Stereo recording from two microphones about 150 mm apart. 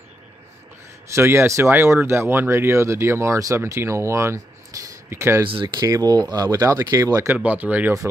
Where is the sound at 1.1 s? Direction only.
20° right (ahead or behind).